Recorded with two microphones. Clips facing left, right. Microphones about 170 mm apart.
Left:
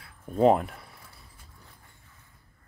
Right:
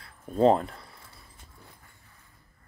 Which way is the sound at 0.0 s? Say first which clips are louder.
Even; 10° left (ahead or behind).